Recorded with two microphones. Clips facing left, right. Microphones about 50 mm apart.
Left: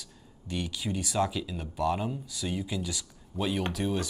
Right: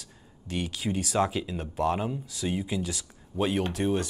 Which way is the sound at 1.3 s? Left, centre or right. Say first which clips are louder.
Right 3 dB; right.